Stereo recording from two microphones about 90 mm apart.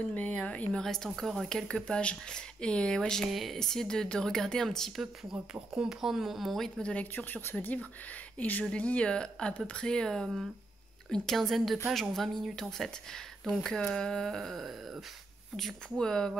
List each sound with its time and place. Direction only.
0.1 s speech: 20° left (ahead or behind)